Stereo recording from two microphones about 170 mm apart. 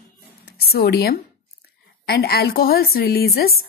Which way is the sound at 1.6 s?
65° left (ahead or behind).